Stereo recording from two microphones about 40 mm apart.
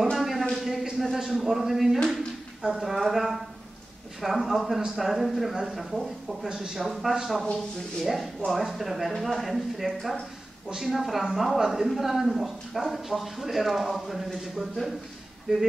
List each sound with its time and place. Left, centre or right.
0.0 s a sound: centre
0.9 s speech: centre
15.5 s speech: centre